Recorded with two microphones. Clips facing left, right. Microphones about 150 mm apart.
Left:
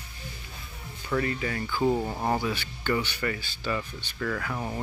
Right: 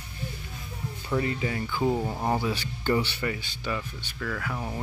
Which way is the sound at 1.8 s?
Centre (ahead or behind).